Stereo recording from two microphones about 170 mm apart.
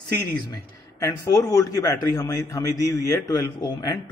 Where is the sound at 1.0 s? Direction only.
20° left (ahead or behind).